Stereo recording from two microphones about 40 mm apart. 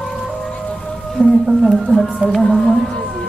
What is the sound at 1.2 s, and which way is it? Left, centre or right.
Speech, right.